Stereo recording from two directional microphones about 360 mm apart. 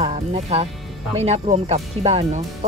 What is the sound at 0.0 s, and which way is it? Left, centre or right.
Speech, centre.